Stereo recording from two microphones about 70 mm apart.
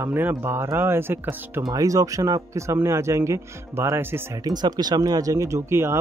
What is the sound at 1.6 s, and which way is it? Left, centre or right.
Speech, right.